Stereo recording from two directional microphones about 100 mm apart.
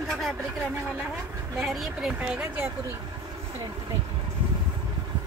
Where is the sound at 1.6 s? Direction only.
5° right (ahead or behind).